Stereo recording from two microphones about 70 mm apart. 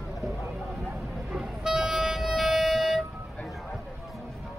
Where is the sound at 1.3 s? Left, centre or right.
Centre.